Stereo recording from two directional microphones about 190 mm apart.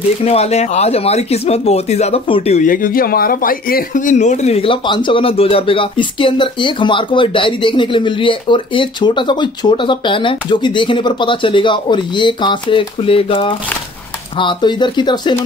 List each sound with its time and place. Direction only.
0.2 s speech: 35° left (ahead or behind)